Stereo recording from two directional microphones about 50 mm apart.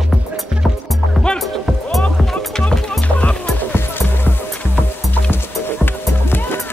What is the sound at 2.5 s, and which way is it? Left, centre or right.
Music, centre.